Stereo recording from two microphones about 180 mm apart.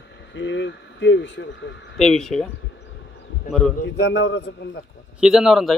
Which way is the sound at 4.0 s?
90° left.